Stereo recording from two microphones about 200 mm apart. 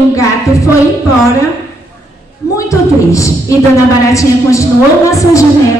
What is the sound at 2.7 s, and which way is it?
A woman's voice, 15° left (ahead or behind).